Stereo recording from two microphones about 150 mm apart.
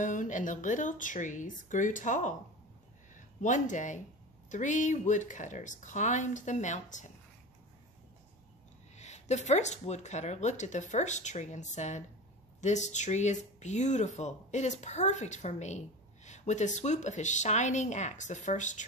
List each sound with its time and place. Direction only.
0.0 s speech: 60° left (ahead or behind)
8.9 s speech: 50° left (ahead or behind)